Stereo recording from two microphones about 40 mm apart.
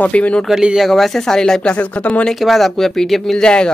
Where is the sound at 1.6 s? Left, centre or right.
Left.